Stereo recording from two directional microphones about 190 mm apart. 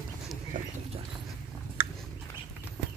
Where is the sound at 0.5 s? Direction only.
45° right (ahead or behind).